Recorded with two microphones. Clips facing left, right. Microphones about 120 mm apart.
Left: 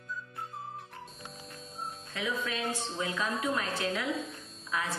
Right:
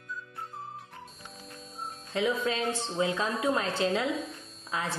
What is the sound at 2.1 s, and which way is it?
A woman's voice, 30° right (ahead or behind).